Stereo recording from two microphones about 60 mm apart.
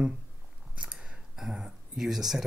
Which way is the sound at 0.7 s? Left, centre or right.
Centre.